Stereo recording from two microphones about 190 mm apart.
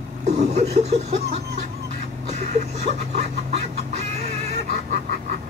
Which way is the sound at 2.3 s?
35° right (ahead or behind).